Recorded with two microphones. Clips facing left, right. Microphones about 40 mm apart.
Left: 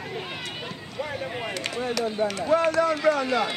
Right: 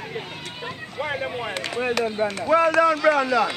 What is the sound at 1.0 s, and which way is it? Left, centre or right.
Speech, right.